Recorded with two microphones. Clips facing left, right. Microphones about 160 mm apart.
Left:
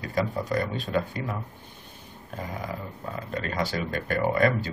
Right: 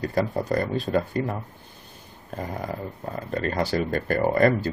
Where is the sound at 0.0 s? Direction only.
40° right (ahead or behind).